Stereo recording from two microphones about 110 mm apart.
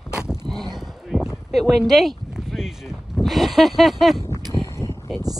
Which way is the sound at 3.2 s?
Centre (ahead or behind).